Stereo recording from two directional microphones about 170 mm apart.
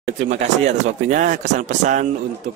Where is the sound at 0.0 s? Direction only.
45° right (ahead or behind).